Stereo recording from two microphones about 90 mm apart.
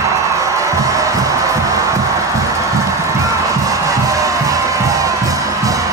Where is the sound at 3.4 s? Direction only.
40° right (ahead or behind).